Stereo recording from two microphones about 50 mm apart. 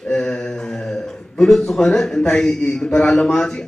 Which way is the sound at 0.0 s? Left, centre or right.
Centre.